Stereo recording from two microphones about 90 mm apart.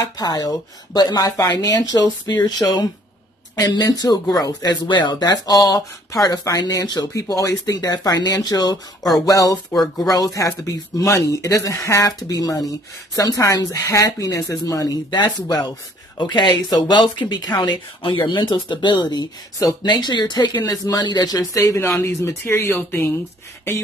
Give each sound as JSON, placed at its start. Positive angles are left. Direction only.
{"t": 0.0, "sound": "speech", "side_deg": 45}
{"t": 3.5, "sound": "speech", "side_deg": 45}
{"t": 15.0, "sound": "speech", "side_deg": 50}
{"t": 16.2, "sound": "speech", "side_deg": 60}